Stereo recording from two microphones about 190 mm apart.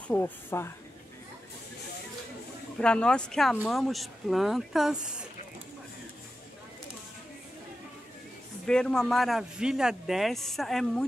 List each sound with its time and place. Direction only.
0.1 s speech: 10° left (ahead or behind)
2.8 s speech: 5° left (ahead or behind)
8.6 s speech: 5° left (ahead or behind)